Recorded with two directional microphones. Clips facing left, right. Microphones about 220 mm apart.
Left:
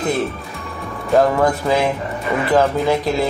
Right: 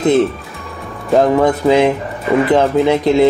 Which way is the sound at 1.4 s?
20° right (ahead or behind).